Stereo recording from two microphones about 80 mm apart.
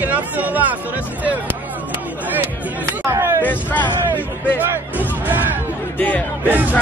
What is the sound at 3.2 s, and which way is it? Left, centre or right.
Hubbub, right.